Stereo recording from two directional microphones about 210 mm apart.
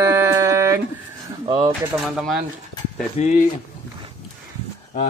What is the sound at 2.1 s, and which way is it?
Speech, centre (ahead or behind).